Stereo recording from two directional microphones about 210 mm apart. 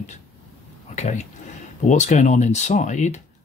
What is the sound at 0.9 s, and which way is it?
Speech, 35° left (ahead or behind).